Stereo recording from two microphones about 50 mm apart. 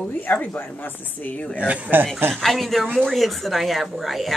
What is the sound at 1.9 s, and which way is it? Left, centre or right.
Speech, right.